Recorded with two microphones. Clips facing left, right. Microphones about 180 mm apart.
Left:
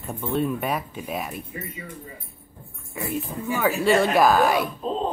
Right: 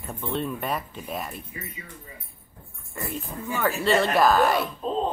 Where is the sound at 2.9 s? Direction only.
5° left (ahead or behind).